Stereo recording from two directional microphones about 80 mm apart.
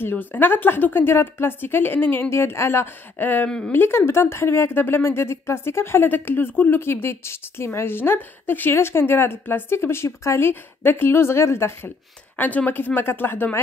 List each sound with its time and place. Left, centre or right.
0.0 s speech: left
3.4 s speech: centre
3.7 s speech: left
12.4 s speech: left